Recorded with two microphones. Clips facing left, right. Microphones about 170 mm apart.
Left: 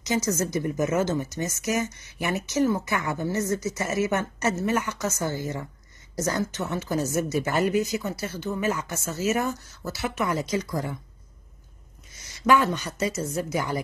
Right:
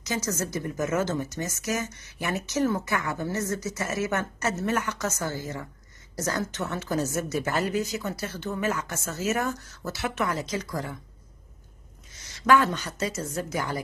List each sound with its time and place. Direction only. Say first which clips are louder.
0.0 s speech: left 4 dB; 15° left (ahead or behind)
12.4 s speech: even; 15° left (ahead or behind)